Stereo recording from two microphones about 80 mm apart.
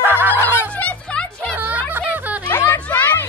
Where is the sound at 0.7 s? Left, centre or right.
Centre.